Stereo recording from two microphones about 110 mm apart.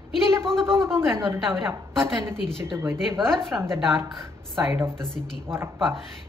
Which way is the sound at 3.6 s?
25° right (ahead or behind).